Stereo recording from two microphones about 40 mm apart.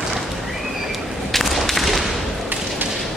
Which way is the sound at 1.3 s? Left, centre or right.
Centre.